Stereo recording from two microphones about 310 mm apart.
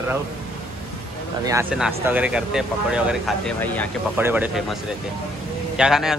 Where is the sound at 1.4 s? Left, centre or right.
Centre.